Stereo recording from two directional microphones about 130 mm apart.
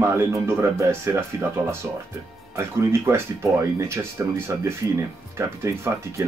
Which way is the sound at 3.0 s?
20° right (ahead or behind).